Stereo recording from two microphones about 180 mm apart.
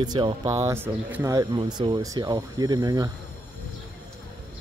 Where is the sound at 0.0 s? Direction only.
25° right (ahead or behind).